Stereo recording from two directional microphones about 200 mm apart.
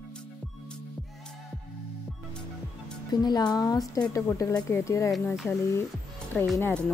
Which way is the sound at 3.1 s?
20° left (ahead or behind).